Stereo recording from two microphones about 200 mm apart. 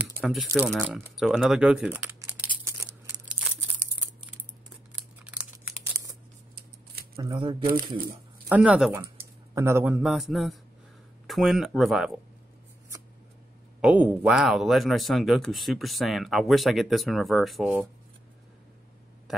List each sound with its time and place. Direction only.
0.0 s a sound: centre (ahead or behind)
0.7 s crumpling: 5° right (ahead or behind)
4.9 s computer keyboard: 5° right (ahead or behind)
7.2 s speech: 20° right (ahead or behind)
8.5 s speech: 5° right (ahead or behind)
13.7 s speech: 5° right (ahead or behind)